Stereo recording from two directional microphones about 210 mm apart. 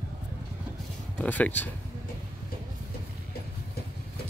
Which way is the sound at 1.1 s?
5° left (ahead or behind).